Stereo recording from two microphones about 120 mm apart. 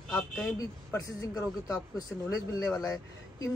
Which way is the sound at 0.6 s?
25° left (ahead or behind).